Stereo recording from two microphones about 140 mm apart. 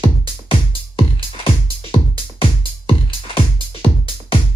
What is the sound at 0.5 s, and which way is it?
Music, 40° left (ahead or behind).